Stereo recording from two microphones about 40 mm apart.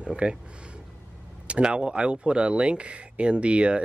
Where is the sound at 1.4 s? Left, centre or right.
Right.